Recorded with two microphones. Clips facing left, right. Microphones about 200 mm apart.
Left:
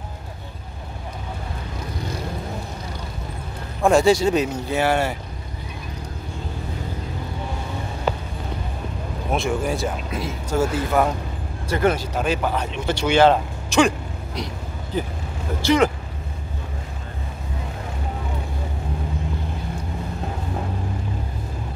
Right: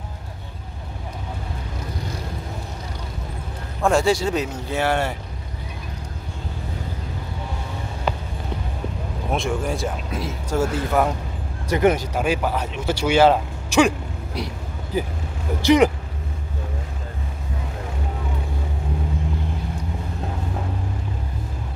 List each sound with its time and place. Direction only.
3.8 s speech: 20° left (ahead or behind)
9.3 s speech: 5° left (ahead or behind)
11.7 s speech: 15° right (ahead or behind)